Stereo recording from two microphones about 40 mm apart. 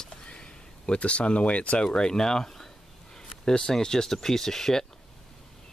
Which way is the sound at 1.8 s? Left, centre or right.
Left.